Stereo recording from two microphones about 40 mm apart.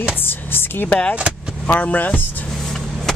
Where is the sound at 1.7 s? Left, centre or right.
Left.